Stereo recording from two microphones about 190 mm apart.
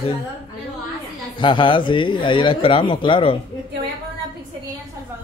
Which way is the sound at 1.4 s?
25° left (ahead or behind).